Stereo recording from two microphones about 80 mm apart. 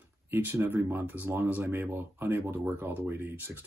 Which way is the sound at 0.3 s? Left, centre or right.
Right.